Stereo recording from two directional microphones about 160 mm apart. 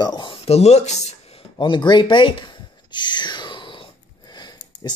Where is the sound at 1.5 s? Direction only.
30° left (ahead or behind).